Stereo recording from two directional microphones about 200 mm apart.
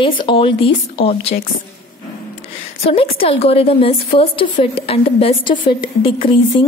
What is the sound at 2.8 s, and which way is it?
A woman's voice, 30° left (ahead or behind).